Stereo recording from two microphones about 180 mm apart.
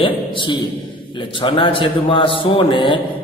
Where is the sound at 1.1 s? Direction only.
30° left (ahead or behind).